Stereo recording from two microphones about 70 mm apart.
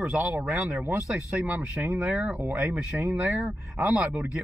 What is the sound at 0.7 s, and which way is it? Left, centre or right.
A man's voice, centre.